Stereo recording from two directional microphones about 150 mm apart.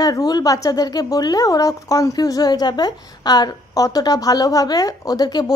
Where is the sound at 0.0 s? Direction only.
25° left (ahead or behind).